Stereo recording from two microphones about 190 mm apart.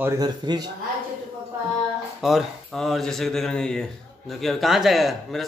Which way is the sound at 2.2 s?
Centre (ahead or behind).